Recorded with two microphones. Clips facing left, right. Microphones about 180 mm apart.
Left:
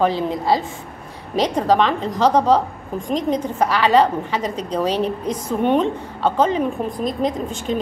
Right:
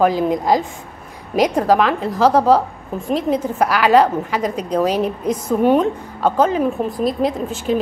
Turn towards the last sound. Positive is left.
turn(degrees=-5)  # may be behind; listen again after turning